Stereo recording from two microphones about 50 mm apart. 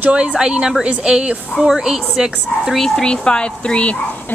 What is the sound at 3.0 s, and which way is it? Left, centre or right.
Speech, centre.